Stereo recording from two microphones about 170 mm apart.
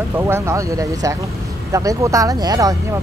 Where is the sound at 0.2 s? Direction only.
15° right (ahead or behind).